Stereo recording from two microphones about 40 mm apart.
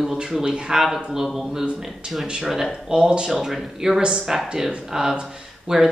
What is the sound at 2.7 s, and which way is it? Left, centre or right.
Speech, centre.